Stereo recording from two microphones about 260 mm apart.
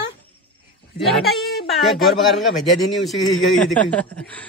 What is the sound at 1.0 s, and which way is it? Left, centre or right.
Speech, centre.